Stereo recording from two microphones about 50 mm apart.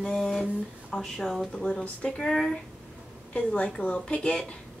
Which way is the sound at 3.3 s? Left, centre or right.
Left.